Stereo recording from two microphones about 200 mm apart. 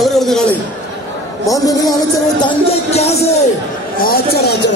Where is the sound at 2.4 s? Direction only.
30° left (ahead or behind).